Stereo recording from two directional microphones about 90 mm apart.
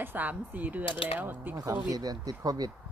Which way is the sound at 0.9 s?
90° left.